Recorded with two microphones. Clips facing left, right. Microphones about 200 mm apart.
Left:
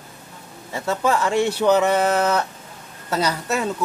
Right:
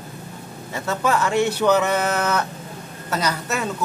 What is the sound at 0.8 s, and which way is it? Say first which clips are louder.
Speech: left 1 dB; 30° left (ahead or behind).